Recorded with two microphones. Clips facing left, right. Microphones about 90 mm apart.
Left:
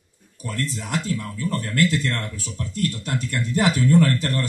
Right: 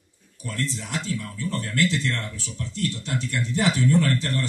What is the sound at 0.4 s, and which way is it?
Speech, 45° left (ahead or behind).